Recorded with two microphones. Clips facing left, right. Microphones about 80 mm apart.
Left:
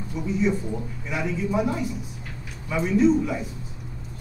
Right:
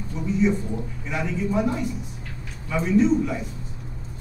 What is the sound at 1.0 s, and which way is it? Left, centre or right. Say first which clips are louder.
Speech: right 1 dB; centre.